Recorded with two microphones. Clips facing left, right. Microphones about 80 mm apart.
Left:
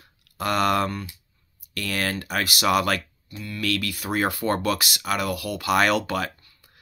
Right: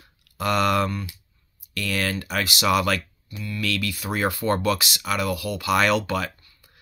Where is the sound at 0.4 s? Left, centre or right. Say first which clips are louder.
Right 1 dB; left.